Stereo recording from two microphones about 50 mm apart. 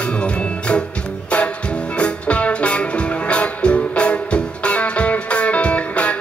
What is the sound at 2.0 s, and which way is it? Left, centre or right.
Music, left.